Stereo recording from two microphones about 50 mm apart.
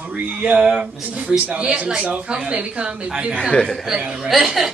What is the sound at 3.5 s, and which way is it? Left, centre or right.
Speech, centre.